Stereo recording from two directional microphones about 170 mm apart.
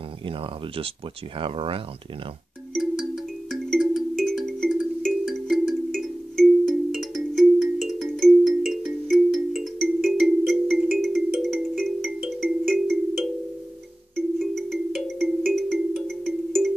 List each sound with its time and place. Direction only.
1.4 s speech: 30° right (ahead or behind)
2.7 s music: centre (ahead or behind)
14.1 s ringtone: centre (ahead or behind)